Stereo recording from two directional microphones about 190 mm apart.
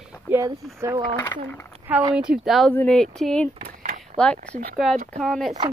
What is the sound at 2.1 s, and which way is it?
Speech, 5° right (ahead or behind).